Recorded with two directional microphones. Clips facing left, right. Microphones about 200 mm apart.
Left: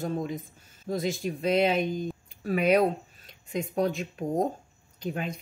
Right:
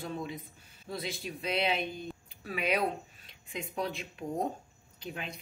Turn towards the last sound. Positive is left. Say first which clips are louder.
# left 8 dB
turn(degrees=45)  # may be behind; listen again after turning